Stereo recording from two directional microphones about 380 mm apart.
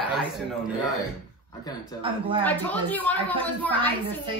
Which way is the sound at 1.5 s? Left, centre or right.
Centre.